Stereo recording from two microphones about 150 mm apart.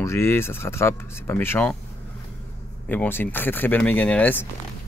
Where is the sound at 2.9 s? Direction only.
15° left (ahead or behind).